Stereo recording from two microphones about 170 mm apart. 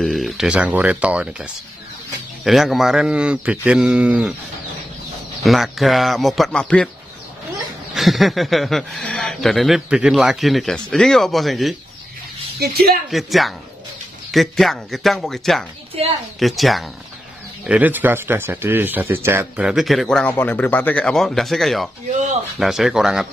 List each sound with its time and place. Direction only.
0.0 s speech: centre (ahead or behind)
5.4 s speech: centre (ahead or behind)
7.9 s speech: centre (ahead or behind)
12.5 s speech: 65° right (ahead or behind)
13.1 s speech: centre (ahead or behind)
16.0 s a woman's voice: 35° right (ahead or behind)
16.3 s speech: centre (ahead or behind)